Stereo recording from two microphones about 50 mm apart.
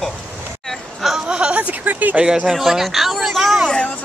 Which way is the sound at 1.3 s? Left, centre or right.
Right.